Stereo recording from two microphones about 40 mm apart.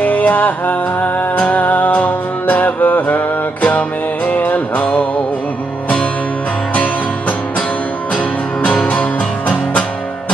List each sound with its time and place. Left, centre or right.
0.0 s music: left
6.7 s music: left